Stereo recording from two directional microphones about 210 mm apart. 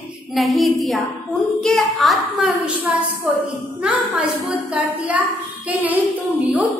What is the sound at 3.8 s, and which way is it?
Speech, 5° right (ahead or behind).